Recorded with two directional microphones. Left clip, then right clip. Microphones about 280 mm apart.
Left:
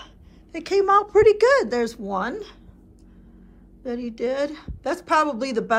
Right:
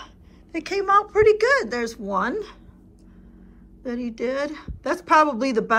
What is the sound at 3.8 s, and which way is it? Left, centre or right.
A woman's voice, centre.